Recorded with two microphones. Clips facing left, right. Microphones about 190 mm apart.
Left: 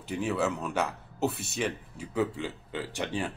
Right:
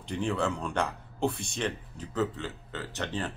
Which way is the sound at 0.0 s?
5° left (ahead or behind).